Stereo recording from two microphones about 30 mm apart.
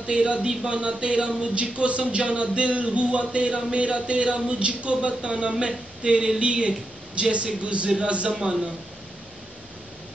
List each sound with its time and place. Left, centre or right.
0.0 s speech: right